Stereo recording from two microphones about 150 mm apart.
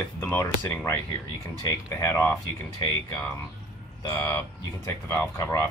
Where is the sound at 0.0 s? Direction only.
15° left (ahead or behind).